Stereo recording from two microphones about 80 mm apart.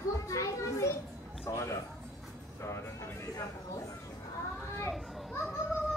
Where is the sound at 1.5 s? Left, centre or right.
Left.